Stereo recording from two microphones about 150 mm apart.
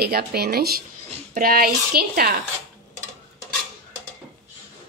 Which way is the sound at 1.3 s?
75° right (ahead or behind).